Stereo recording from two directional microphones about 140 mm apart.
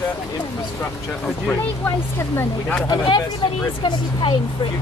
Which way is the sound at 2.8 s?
30° left (ahead or behind).